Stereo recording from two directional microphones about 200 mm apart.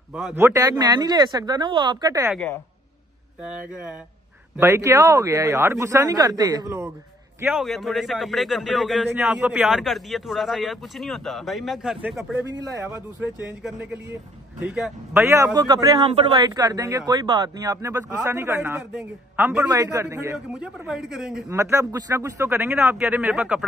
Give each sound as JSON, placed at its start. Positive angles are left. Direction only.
{"t": 0.1, "sound": "speech", "side_deg": -5}
{"t": 2.3, "sound": "a man's voice", "side_deg": 5}
{"t": 4.6, "sound": "a man's voice", "side_deg": -15}
{"t": 7.6, "sound": "a man's voice", "side_deg": 0}
{"t": 12.6, "sound": "a man's voice", "side_deg": -15}
{"t": 20.5, "sound": "a man's voice", "side_deg": -5}
{"t": 21.5, "sound": "a man's voice", "side_deg": -15}